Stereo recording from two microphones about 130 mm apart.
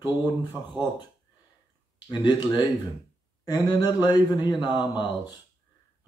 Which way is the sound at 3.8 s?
15° right (ahead or behind).